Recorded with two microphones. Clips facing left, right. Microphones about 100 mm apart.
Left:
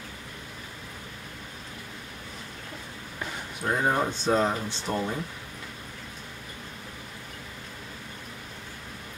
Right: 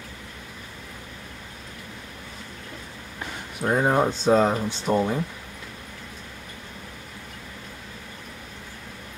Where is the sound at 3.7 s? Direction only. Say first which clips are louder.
Right 5 dB; 20° right (ahead or behind).